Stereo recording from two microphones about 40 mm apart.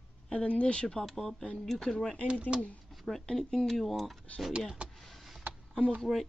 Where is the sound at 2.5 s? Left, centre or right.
Centre.